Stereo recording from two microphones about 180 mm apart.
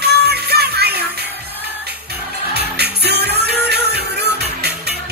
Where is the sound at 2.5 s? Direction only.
65° right (ahead or behind).